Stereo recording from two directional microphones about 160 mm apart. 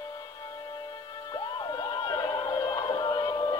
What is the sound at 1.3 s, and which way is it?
Emergency vehicle, 25° left (ahead or behind).